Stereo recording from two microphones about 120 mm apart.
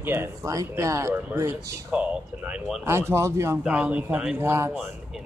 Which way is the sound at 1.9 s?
10° right (ahead or behind).